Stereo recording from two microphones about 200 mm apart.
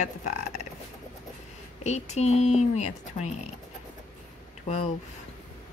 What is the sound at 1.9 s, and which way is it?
Speech, 35° left (ahead or behind).